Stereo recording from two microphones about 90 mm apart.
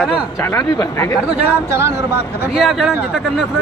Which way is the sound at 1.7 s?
30° right (ahead or behind).